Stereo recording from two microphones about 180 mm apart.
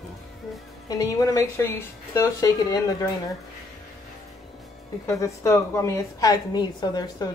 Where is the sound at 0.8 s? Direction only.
20° left (ahead or behind).